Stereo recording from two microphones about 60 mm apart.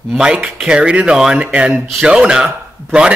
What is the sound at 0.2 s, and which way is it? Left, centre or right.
Speech, centre.